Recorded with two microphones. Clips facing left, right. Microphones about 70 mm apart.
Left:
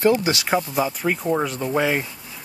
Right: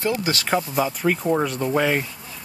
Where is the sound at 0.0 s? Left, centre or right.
Left.